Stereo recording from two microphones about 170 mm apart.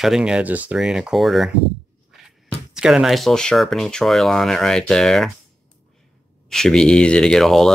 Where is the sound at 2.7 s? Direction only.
5° right (ahead or behind).